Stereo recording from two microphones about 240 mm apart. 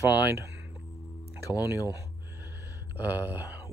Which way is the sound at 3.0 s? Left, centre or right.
Centre.